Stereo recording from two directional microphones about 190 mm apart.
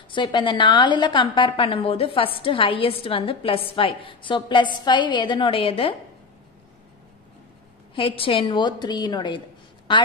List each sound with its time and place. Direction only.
0.1 s a woman's voice: 25° left (ahead or behind)
7.9 s a woman's voice: 30° left (ahead or behind)